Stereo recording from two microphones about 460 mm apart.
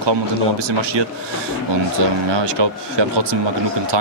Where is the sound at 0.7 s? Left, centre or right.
Right.